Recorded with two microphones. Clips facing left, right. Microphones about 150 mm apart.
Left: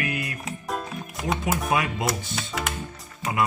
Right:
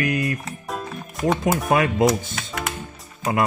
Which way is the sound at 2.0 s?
Centre (ahead or behind).